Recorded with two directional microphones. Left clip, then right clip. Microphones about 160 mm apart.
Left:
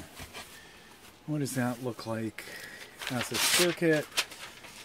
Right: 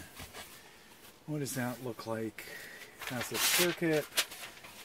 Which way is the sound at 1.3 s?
35° left (ahead or behind).